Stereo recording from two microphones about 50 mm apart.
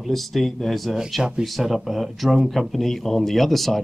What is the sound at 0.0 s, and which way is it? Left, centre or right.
Speech, centre.